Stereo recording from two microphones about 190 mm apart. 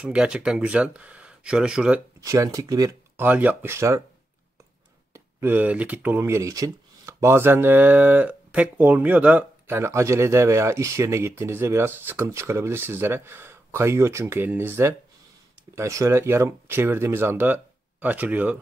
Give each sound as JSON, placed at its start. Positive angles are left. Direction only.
{"t": 0.0, "sound": "speech", "side_deg": -5}
{"t": 2.2, "sound": "speech", "side_deg": -15}
{"t": 5.1, "sound": "speech", "side_deg": -10}